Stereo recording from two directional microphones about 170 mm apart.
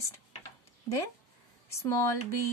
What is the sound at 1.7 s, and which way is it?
Speech, 15° left (ahead or behind).